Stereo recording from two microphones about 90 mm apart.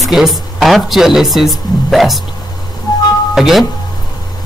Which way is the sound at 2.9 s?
50° left (ahead or behind).